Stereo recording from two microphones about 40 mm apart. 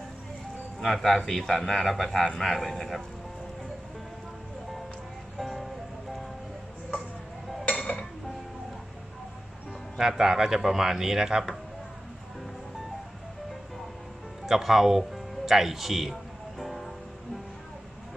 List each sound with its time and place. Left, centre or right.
0.7 s a man's voice: centre
5.4 s music: centre
7.7 s dishes: left
9.9 s speech: centre
14.4 s music: centre